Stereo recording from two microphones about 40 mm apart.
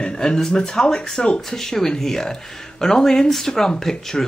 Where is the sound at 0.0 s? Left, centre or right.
Left.